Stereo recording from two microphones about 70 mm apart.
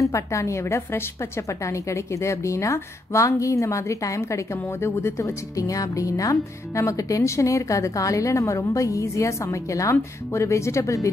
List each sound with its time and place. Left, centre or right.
0.0 s speech: left
5.6 s speech: left